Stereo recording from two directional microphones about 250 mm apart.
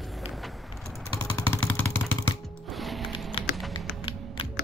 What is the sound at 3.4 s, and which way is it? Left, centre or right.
Music, left.